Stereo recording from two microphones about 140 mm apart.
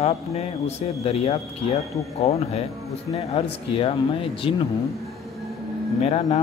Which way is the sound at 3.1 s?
45° left (ahead or behind).